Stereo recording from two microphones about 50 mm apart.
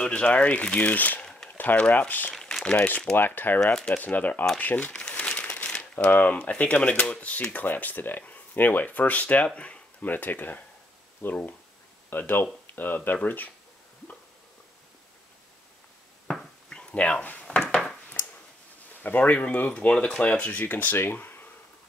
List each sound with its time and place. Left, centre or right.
0.0 s speech: left
1.2 s a sound: centre
1.8 s speech: left
3.2 s speech: left
3.6 s speech: centre
3.9 s speech: left
4.9 s crumpling: centre; by 6.3 s left
6.3 s speech: left
10.0 s speech: left
16.6 s a sound: centre
17.5 s a sound: centre
19.0 s speech: left
19.9 s speech: left